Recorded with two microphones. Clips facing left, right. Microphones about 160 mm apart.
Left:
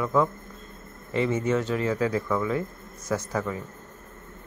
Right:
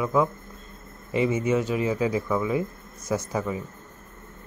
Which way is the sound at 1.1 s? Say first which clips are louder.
Right 1 dB; 15° right (ahead or behind).